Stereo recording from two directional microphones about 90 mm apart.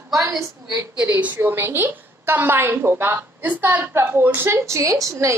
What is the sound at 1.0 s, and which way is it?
A woman's voice, 20° right (ahead or behind).